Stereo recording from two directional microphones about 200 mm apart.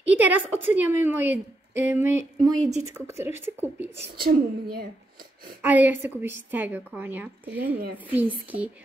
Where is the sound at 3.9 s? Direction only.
55° right (ahead or behind).